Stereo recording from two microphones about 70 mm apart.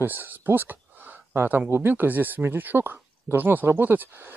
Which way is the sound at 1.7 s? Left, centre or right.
Right.